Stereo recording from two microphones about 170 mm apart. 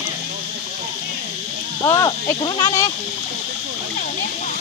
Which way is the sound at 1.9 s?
20° left (ahead or behind).